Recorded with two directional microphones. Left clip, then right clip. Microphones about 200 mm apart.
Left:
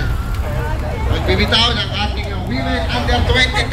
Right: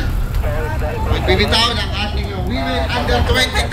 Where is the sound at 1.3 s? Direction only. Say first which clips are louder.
Even; 50° right (ahead or behind).